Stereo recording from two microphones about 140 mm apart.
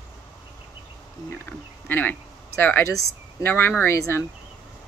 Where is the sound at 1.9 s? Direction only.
15° left (ahead or behind).